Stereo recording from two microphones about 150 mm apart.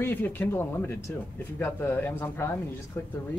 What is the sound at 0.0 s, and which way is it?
Speech, 15° left (ahead or behind).